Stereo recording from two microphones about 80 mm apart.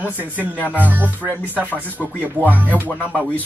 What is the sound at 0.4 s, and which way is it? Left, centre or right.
Speech, centre.